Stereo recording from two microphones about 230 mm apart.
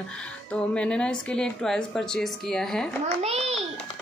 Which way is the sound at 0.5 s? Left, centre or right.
Centre.